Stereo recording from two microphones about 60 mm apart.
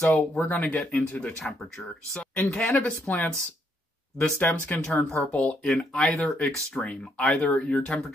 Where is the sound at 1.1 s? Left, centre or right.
Centre.